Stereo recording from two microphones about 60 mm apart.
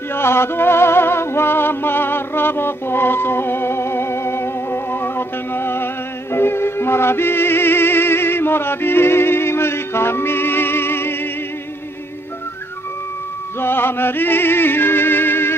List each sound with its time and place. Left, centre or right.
0.1 s music: left
13.6 s music: left